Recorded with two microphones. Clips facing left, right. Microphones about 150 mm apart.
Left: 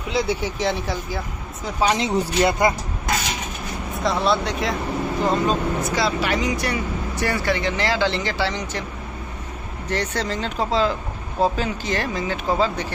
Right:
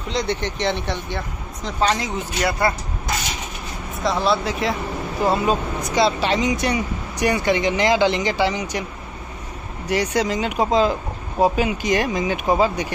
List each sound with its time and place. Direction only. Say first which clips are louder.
0.1 s speech: left 1 dB; 5° left (ahead or behind)
2.0 s speech: left 5 dB; 25° left (ahead or behind)
3.9 s speech: right 1 dB; centre (ahead or behind)
5.9 s speech: right 6 dB; 25° right (ahead or behind)
9.8 s speech: right 4 dB; 10° right (ahead or behind)